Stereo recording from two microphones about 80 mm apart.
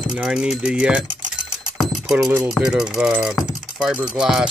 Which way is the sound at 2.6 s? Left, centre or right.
Centre.